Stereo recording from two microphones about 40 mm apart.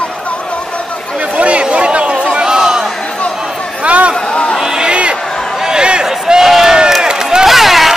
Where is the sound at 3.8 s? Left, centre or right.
Right.